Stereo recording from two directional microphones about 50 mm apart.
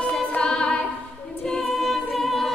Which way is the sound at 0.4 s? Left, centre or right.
Centre.